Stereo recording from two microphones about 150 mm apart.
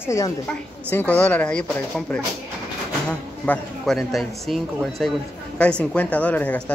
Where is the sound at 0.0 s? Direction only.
20° left (ahead or behind).